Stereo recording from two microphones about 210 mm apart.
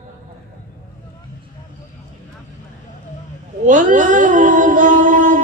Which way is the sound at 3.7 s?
40° right (ahead or behind).